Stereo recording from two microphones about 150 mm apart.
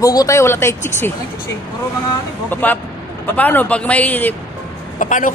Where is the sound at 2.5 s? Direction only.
10° left (ahead or behind).